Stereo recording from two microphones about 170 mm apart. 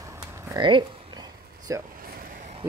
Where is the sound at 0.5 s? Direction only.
30° right (ahead or behind).